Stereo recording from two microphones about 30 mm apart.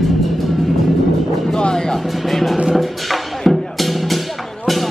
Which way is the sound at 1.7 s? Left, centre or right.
Left.